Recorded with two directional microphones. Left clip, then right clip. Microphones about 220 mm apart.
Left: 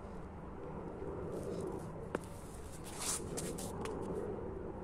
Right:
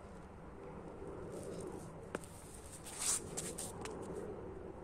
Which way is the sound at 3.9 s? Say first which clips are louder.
Left 4 dB; 40° left (ahead or behind).